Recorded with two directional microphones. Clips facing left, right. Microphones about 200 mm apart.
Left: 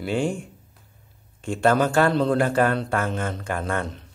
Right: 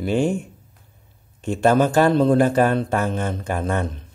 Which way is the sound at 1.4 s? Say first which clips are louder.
Right 3 dB; 20° right (ahead or behind).